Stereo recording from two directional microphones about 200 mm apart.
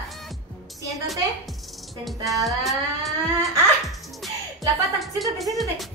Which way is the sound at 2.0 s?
Centre (ahead or behind).